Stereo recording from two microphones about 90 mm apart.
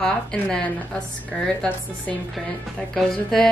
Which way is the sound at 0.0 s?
5° left (ahead or behind).